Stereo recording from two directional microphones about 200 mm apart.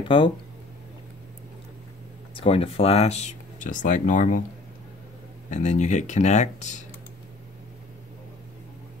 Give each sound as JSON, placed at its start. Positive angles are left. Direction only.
{"t": 0.1, "sound": "speech", "side_deg": 25}
{"t": 2.3, "sound": "speech", "side_deg": 30}
{"t": 5.5, "sound": "speech", "side_deg": 35}